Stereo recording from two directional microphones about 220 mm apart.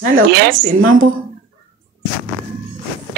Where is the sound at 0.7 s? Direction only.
65° right (ahead or behind).